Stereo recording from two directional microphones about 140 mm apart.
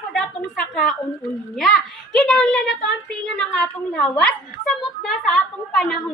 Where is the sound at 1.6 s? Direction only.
5° left (ahead or behind).